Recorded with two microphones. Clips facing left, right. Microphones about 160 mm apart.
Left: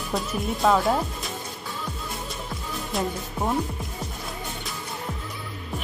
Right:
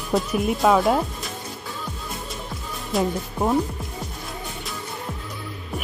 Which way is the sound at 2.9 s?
Centre (ahead or behind).